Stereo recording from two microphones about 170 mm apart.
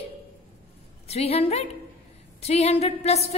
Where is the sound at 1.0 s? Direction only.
35° left (ahead or behind).